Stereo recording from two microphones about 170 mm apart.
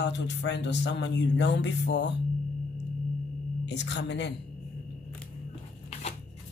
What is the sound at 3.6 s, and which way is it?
Speech, 90° left.